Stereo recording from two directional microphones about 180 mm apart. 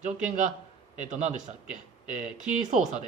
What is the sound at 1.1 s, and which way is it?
Speech, 40° right (ahead or behind).